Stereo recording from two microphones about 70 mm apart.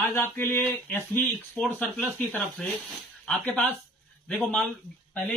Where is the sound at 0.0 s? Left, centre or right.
Left.